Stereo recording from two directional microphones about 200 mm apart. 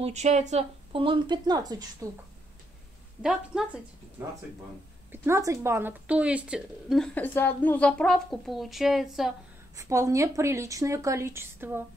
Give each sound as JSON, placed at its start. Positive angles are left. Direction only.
{"t": 0.0, "sound": "speech", "side_deg": -35}
{"t": 3.2, "sound": "a woman's voice", "side_deg": -5}
{"t": 9.8, "sound": "a woman's voice", "side_deg": -15}